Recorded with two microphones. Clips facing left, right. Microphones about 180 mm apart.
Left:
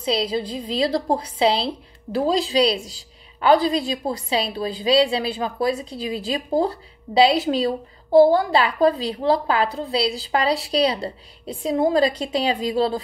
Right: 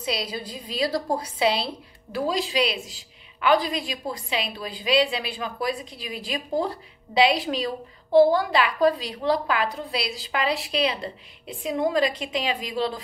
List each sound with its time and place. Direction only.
0.0 s a woman's voice: 25° left (ahead or behind)